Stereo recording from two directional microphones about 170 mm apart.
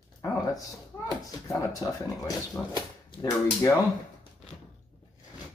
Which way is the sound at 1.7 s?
20° left (ahead or behind).